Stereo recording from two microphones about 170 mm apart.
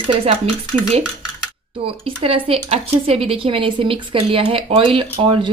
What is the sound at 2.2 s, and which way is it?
Speech, 35° right (ahead or behind).